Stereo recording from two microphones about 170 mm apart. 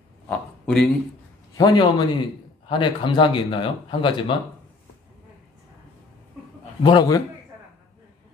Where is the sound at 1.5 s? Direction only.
20° left (ahead or behind).